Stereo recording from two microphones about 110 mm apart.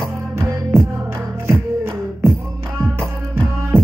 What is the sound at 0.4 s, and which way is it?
Music, 25° right (ahead or behind).